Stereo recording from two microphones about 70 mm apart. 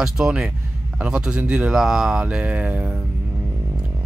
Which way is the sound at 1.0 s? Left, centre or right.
Centre.